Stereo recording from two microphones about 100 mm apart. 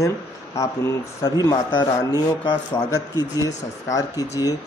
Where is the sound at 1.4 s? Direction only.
40° left (ahead or behind).